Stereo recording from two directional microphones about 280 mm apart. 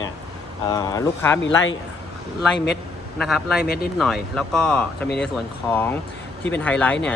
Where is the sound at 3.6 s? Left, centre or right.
Left.